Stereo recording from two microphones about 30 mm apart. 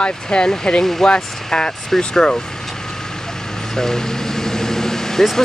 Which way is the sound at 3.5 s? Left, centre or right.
Centre.